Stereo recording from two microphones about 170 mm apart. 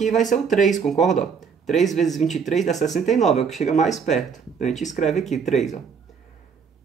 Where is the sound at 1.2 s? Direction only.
Centre (ahead or behind).